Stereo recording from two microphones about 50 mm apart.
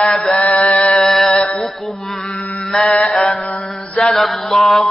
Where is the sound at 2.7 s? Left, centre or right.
Centre.